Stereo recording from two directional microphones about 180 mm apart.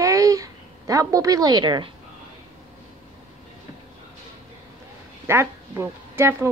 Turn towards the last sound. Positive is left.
turn(degrees=-15)  # may be behind; listen again after turning